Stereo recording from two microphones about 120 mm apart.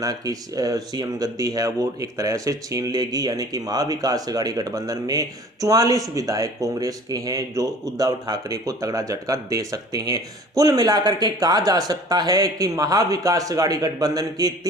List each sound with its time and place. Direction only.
0.0 s speech: 30° right (ahead or behind)